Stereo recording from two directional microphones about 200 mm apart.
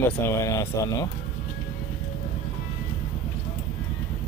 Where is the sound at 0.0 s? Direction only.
15° left (ahead or behind).